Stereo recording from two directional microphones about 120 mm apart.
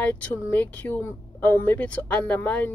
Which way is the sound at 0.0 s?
15° left (ahead or behind).